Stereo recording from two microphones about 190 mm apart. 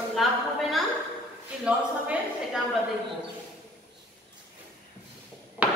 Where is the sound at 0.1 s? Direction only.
Centre (ahead or behind).